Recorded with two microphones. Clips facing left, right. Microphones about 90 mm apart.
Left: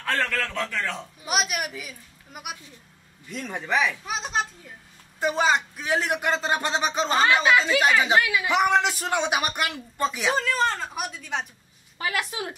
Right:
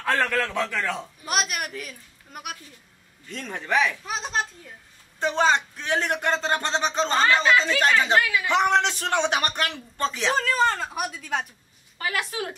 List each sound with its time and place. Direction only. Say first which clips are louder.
0.0 s a man's voice: right 3 dB; 10° right (ahead or behind)
1.2 s a woman's voice: left 1 dB; 5° left (ahead or behind)
12.2 s a man's voice: right 3 dB; 15° left (ahead or behind)